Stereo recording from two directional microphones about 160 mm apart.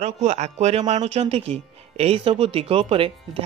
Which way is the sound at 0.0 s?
45° right (ahead or behind).